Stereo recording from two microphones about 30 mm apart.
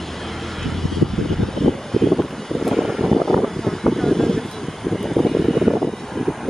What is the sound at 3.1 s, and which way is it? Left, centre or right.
Vehicle, centre.